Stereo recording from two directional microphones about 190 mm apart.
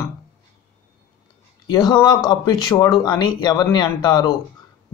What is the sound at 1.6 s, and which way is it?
Speech, 20° left (ahead or behind).